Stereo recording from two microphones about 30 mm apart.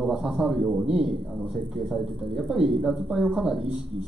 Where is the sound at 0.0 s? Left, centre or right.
Right.